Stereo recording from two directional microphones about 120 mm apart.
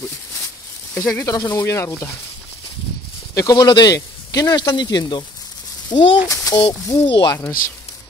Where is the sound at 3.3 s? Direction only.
30° left (ahead or behind).